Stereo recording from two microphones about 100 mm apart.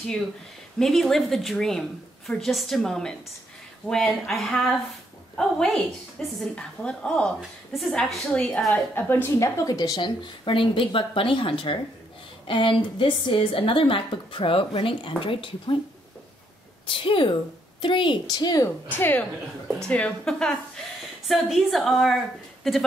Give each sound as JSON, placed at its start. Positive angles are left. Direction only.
{"t": 0.7, "sound": "a woman's voice", "side_deg": 0}
{"t": 8.9, "sound": "a woman's voice", "side_deg": 20}
{"t": 9.6, "sound": "a woman's voice", "side_deg": 40}
{"t": 16.8, "sound": "a woman's voice", "side_deg": 60}
{"t": 18.9, "sound": "a woman's voice", "side_deg": 20}